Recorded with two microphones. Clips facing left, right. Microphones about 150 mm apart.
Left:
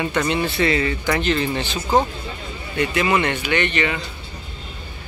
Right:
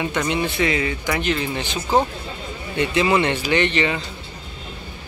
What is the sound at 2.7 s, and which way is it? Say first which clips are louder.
Speech: right 1 dB; 25° right (ahead or behind).